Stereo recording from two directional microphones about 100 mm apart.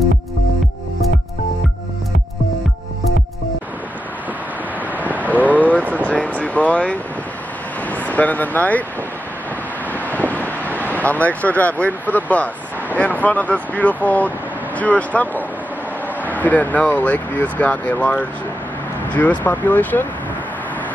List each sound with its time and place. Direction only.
5.4 s a sound: 15° left (ahead or behind)
5.8 s a sound: 15° right (ahead or behind)
6.0 s air conditioning: 10° left (ahead or behind)
7.9 s speech: 15° left (ahead or behind)
10.3 s vehicle: 15° left (ahead or behind)
11.0 s speech: 15° left (ahead or behind)
19.4 s speech: 20° left (ahead or behind)